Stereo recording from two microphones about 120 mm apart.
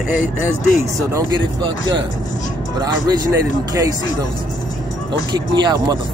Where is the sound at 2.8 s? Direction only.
30° right (ahead or behind).